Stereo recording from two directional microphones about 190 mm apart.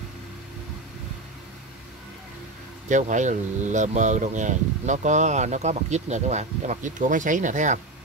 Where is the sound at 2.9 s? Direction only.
40° right (ahead or behind).